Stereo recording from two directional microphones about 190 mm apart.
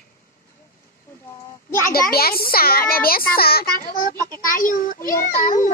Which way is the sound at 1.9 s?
55° left (ahead or behind).